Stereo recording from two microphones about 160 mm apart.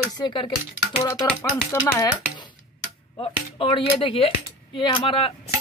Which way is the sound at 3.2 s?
35° left (ahead or behind).